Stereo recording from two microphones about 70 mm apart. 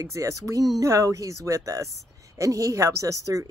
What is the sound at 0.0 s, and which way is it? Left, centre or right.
Speech, right.